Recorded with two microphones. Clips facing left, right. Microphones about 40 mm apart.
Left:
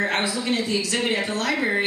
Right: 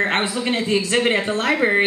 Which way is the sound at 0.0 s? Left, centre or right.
Right.